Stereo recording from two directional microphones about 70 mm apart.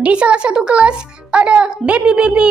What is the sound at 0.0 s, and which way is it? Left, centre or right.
A child's voice, centre.